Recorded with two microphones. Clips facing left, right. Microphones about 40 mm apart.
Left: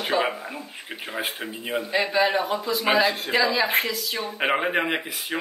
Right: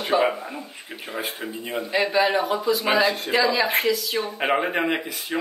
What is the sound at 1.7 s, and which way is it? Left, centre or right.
Speech, centre.